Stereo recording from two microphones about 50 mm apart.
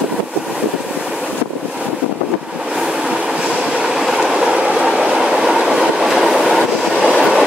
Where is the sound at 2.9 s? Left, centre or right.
Centre.